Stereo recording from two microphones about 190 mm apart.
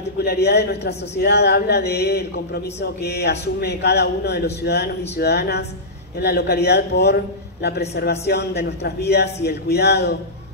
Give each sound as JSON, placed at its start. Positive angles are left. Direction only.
{"t": 0.2, "sound": "a woman's voice", "side_deg": 60}